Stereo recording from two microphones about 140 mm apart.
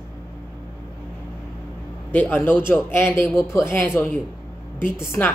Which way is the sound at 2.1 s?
15° left (ahead or behind).